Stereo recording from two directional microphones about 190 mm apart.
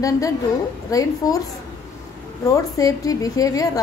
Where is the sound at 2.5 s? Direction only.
20° left (ahead or behind).